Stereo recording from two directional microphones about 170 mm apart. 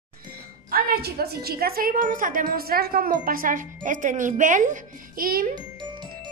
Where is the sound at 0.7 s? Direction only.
60° right (ahead or behind).